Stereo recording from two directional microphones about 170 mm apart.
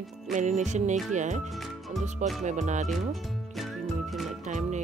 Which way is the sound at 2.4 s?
45° right (ahead or behind).